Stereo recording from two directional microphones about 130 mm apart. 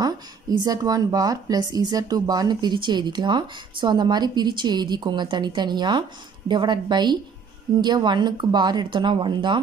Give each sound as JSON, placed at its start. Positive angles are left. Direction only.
{"t": 0.0, "sound": "a woman's voice", "side_deg": -30}